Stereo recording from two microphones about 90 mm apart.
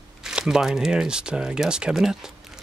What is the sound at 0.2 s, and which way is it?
Speech, 5° right (ahead or behind).